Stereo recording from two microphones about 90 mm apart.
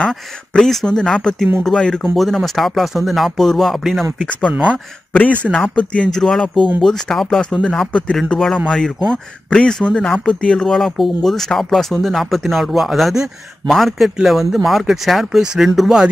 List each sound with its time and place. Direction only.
0.0 s speech: 10° left (ahead or behind)
4.5 s speech: 15° right (ahead or behind)
5.1 s speech: 15° left (ahead or behind)
6.0 s speech: 5° left (ahead or behind)